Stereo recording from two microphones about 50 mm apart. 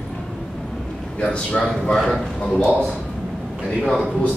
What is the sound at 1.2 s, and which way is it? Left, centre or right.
A man's voice, left.